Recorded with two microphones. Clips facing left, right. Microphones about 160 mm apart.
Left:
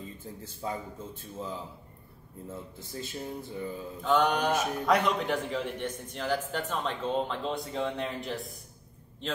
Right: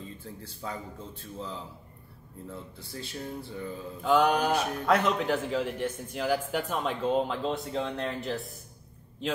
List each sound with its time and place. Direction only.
0.0 s speech: 20° left (ahead or behind)
4.0 s a man's voice: centre (ahead or behind)